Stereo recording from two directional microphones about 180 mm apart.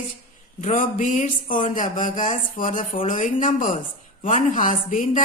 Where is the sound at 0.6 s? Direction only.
45° left (ahead or behind).